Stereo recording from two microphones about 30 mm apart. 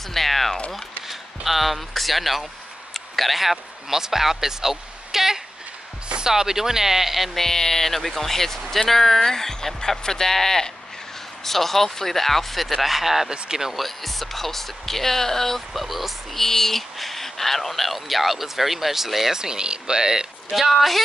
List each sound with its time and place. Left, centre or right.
0.1 s speech: centre
1.0 s speech: centre
2.9 s a sound: centre
4.0 s speech: centre
7.3 s speech: centre
15.7 s speech: centre
16.3 s speech: centre
19.3 s speech: right
20.7 s speech: centre